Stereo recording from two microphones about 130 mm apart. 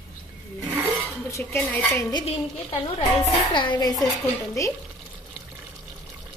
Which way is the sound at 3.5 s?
35° left (ahead or behind).